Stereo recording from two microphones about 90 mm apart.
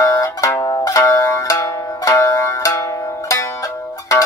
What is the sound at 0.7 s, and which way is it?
Zither, 40° left (ahead or behind).